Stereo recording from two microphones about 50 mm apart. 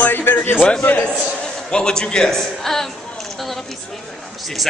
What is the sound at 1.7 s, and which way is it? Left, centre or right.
A man's voice, centre.